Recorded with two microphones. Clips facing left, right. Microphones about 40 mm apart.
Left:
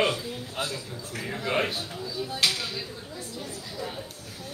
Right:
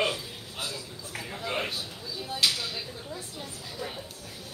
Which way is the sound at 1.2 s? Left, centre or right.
Left.